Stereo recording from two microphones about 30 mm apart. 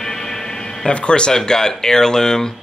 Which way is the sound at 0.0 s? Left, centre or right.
Centre.